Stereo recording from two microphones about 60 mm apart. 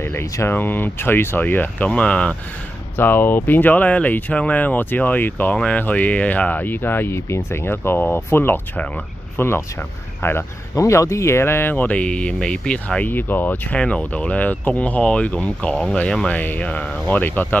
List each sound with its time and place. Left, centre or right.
0.0 s speech: left
0.5 s speech: left
1.9 s speech: centre
3.0 s speech: left
10.8 s speech: left
11.7 s speech: left
13.7 s speech: centre
16.3 s speech: left